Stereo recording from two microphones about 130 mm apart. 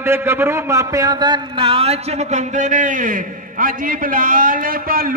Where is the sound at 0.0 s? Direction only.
20° right (ahead or behind).